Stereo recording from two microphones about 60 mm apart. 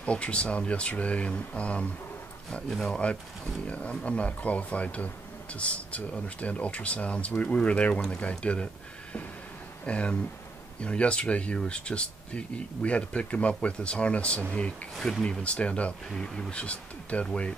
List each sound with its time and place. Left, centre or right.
0.0 s speech: centre
2.7 s speech: centre
3.6 s speech: left
9.8 s speech: centre
15.0 s speech: centre
15.2 s speech: centre